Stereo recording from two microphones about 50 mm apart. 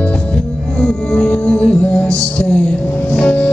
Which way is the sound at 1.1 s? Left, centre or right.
Centre.